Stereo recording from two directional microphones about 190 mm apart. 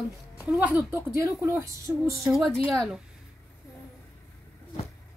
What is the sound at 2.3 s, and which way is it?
Speech, centre (ahead or behind).